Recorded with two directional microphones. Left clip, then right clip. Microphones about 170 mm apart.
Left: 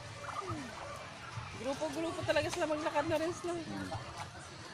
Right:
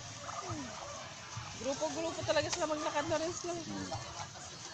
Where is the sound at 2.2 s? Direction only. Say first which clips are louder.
Even; 45° left (ahead or behind).